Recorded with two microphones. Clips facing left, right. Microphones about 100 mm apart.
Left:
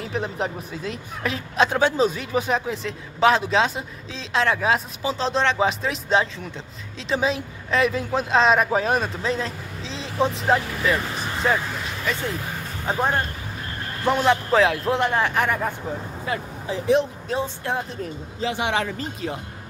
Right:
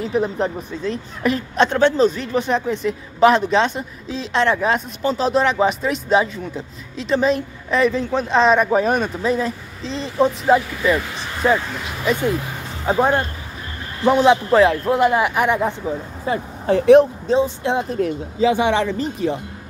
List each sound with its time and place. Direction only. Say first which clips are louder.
0.0 s speech: right 6 dB; centre (ahead or behind)
12.0 s a man's voice: right 9 dB; 15° right (ahead or behind)
14.5 s a man's voice: right 5 dB; centre (ahead or behind)
16.3 s speech: right 6 dB; 25° right (ahead or behind)
16.6 s speech: right 10 dB; 60° right (ahead or behind)
17.3 s speech: right 8 dB; 20° right (ahead or behind)